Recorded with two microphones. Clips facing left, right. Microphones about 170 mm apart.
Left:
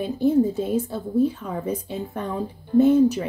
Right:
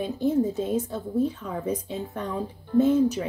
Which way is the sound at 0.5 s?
10° left (ahead or behind).